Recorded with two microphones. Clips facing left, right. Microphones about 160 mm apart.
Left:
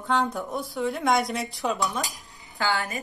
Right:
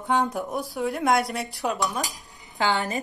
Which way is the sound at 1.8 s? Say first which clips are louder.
Right 1 dB; 20° right (ahead or behind).